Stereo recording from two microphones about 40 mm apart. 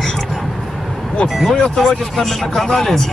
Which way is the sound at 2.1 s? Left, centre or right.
Centre.